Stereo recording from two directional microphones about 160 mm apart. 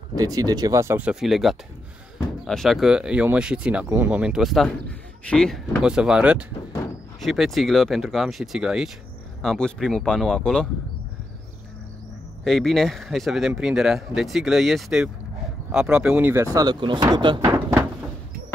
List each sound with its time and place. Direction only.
0.1 s speech: 25° right (ahead or behind); by 10.7 s 5° left (ahead or behind)
12.4 s speech: centre (ahead or behind)
16.5 s speech: 30° right (ahead or behind)
17.4 s a sound: 15° right (ahead or behind)